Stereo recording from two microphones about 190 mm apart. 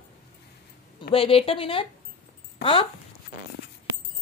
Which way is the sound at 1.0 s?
30° left (ahead or behind).